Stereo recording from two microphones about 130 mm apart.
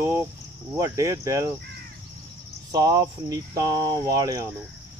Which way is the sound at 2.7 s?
30° right (ahead or behind).